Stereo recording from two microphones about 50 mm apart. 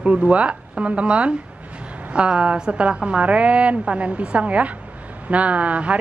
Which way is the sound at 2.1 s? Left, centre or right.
Right.